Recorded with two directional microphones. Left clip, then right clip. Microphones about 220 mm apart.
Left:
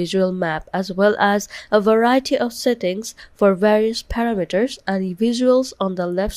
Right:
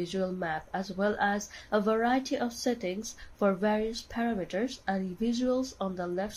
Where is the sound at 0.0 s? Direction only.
45° left (ahead or behind).